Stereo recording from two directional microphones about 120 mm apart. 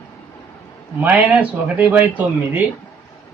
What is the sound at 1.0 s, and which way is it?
Speech, 15° right (ahead or behind).